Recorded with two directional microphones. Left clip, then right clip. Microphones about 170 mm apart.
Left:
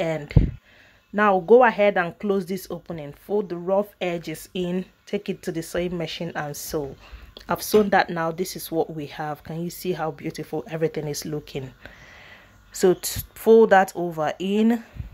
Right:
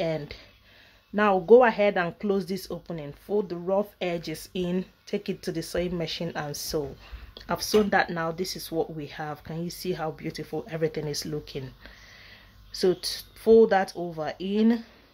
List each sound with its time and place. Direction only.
1.1 s speech: 5° left (ahead or behind)
12.7 s speech: 15° left (ahead or behind)